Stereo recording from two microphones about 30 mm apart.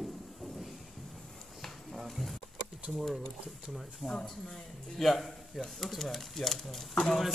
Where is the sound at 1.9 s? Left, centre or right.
Centre.